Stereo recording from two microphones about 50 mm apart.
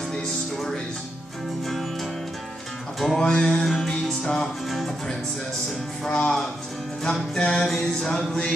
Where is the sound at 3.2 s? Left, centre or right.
Centre.